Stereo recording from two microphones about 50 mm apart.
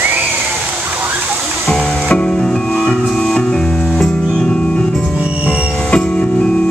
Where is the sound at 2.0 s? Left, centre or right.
Centre.